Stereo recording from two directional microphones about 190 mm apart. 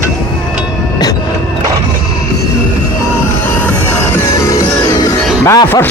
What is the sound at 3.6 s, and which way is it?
Music, 15° left (ahead or behind).